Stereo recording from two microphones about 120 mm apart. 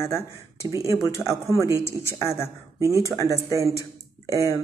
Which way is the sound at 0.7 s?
25° right (ahead or behind).